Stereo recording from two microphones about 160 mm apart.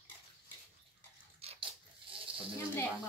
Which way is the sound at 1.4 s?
40° right (ahead or behind).